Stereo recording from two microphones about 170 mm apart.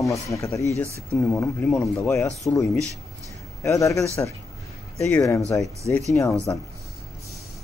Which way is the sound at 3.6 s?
20° left (ahead or behind).